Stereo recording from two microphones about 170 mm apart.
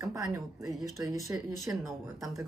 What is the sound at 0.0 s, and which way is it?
A woman's voice, 20° right (ahead or behind).